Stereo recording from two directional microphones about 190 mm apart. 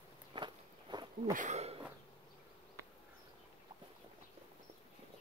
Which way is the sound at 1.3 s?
40° right (ahead or behind).